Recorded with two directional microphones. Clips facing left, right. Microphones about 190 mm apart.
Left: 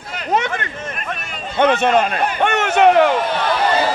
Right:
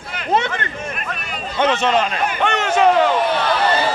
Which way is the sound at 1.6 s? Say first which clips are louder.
Left 3 dB; 55° left (ahead or behind).